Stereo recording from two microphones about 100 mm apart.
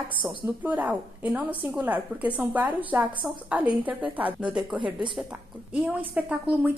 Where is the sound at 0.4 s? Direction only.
15° right (ahead or behind).